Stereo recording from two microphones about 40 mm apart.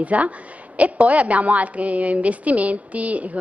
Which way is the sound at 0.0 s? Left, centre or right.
Right.